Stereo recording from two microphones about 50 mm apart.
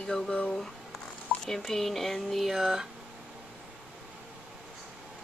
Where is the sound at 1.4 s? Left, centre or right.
Centre.